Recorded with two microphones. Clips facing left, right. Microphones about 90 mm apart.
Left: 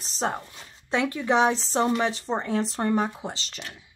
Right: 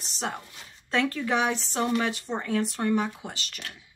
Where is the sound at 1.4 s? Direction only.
30° left (ahead or behind).